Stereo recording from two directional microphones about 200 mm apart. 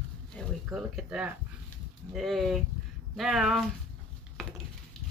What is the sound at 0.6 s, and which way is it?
Speech, 5° right (ahead or behind).